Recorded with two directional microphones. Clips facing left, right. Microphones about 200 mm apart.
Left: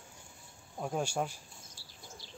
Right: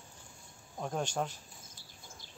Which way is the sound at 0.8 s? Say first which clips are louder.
Left 1 dB; 10° left (ahead or behind).